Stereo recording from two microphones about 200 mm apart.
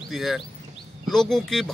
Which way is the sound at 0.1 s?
Centre (ahead or behind).